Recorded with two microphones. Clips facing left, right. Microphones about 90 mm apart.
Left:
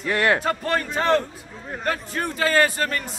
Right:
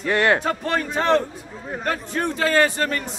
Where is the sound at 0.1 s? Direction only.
25° right (ahead or behind).